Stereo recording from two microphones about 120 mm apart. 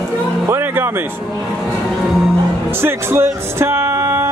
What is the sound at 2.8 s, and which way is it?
Speech, 20° right (ahead or behind).